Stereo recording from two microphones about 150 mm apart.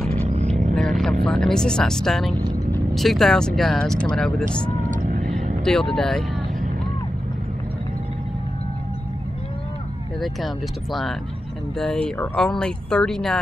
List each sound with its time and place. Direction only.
0.3 s vehicle: 45° right (ahead or behind)
0.7 s vehicle: centre (ahead or behind)
1.2 s speech: 5° left (ahead or behind)
5.0 s vehicle: 60° right (ahead or behind)
5.7 s speech: 5° left (ahead or behind)
10.2 s speech: centre (ahead or behind)